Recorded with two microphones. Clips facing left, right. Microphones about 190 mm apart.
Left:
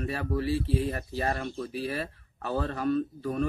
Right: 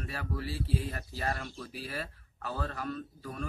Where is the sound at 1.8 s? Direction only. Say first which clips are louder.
Left 5 dB; 65° left (ahead or behind).